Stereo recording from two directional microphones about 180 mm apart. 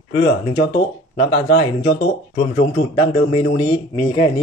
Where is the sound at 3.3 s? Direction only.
30° left (ahead or behind).